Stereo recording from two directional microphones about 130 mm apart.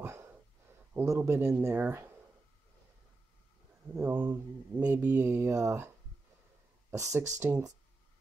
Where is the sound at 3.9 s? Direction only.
15° right (ahead or behind).